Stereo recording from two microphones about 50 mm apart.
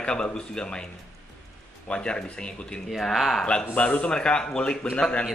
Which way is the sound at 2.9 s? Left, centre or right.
Centre.